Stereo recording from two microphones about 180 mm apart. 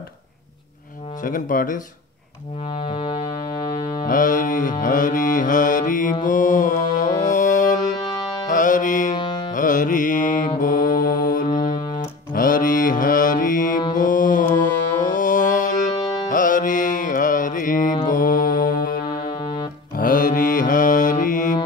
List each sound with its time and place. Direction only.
1.2 s speech: 50° left (ahead or behind)
2.7 s synthesizer: 30° left (ahead or behind)
4.0 s music: 45° left (ahead or behind)
8.0 s music: 20° left (ahead or behind)
8.5 s music: 45° left (ahead or behind)
9.1 s music: 25° left (ahead or behind)
9.5 s carnatic music: 45° left (ahead or behind)
10.6 s music: 50° left (ahead or behind)
12.4 s mantra: 50° left (ahead or behind)
13.9 s music: 45° left (ahead or behind)
15.9 s music: 20° left (ahead or behind)
16.3 s music: 45° left (ahead or behind)
19.0 s music: 25° left (ahead or behind)
20.0 s mantra: 50° left (ahead or behind)